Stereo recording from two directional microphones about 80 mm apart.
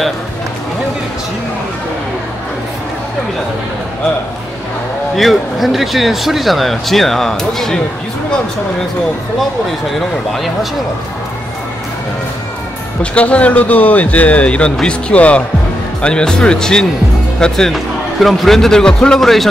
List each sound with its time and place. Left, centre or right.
5.1 s speech: centre
9.9 s speech: centre
13.0 s speech: centre